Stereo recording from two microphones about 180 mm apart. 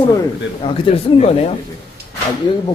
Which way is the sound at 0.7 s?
30° left (ahead or behind).